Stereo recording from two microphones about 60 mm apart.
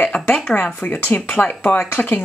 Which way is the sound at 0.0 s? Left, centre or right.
Centre.